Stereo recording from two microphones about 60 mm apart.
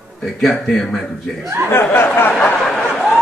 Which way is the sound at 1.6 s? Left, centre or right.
Left.